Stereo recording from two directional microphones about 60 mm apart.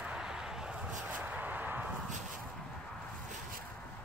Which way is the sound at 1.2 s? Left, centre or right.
Right.